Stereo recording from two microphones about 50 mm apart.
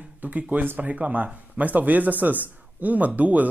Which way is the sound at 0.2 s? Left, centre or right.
Right.